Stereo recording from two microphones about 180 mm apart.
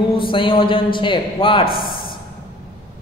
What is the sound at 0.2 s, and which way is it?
A woman's voice, 30° left (ahead or behind).